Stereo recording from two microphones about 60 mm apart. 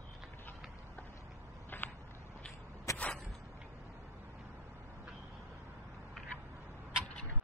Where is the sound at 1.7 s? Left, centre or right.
Left.